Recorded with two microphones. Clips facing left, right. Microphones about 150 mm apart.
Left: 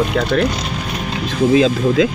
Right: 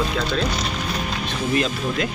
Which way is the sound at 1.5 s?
90° left.